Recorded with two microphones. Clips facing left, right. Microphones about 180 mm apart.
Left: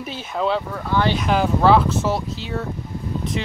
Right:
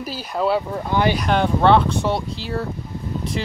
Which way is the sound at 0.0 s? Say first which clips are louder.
Right 1 dB; 5° right (ahead or behind).